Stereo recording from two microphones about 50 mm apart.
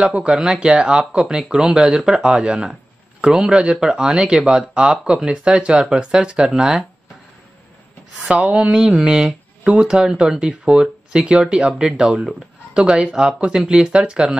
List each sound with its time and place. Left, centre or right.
0.0 s speech: right
8.3 s speech: right